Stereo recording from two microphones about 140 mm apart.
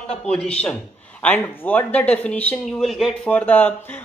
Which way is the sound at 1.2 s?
10° left (ahead or behind).